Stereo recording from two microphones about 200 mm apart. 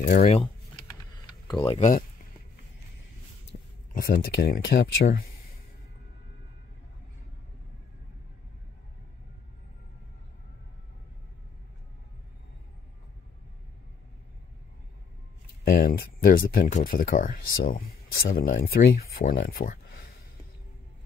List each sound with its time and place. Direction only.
0.0 s speech: 35° left (ahead or behind)
1.8 s speech: 40° left (ahead or behind)
3.5 s a sound: 45° left (ahead or behind)
3.9 s speech: 45° left (ahead or behind)
15.6 s speech: 45° left (ahead or behind)